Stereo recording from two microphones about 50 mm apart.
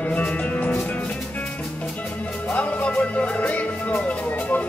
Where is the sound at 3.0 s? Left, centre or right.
Left.